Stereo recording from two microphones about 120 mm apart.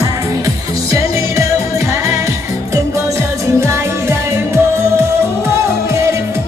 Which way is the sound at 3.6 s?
20° right (ahead or behind).